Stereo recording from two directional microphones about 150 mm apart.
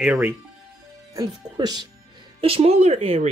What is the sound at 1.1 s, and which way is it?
Speech, 25° right (ahead or behind).